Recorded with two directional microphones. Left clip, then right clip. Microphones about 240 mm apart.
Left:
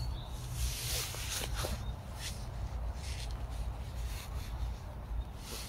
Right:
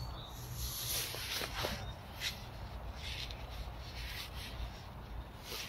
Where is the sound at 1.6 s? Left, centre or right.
Centre.